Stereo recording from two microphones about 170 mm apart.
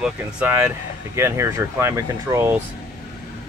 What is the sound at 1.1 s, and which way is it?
Speech, 15° right (ahead or behind).